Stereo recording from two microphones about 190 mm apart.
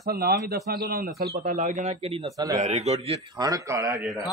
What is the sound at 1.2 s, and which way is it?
Speech, 40° right (ahead or behind).